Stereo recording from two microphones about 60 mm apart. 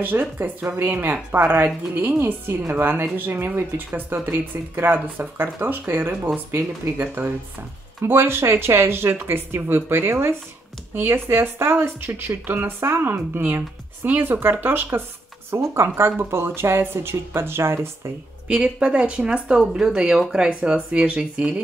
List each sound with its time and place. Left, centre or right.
0.0 s speech: right
18.5 s speech: centre